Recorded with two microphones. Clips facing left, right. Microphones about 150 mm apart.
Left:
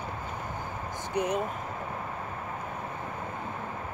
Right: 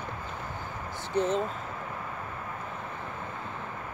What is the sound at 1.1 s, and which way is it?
Speech, 15° left (ahead or behind).